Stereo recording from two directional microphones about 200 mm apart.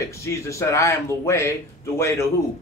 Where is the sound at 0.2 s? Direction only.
15° left (ahead or behind).